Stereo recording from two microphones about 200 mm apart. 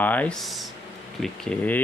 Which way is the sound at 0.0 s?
5° left (ahead or behind).